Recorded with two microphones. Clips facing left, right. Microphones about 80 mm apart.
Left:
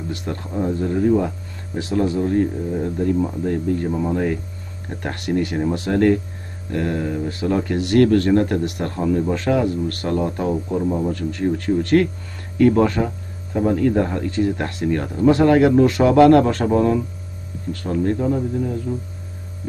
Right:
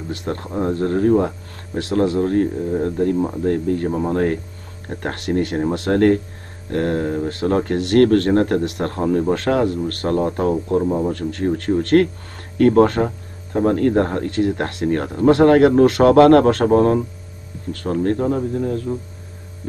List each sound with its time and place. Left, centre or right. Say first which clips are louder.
0.1 s speech: right 4 dB; right
10.8 s a man's voice: right 2 dB; right
11.1 s speech: right 1 dB; right